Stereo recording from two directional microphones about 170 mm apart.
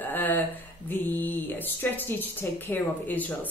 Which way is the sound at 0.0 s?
10° left (ahead or behind).